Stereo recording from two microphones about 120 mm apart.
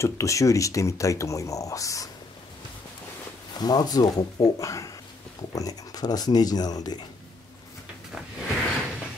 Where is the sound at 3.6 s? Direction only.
35° left (ahead or behind).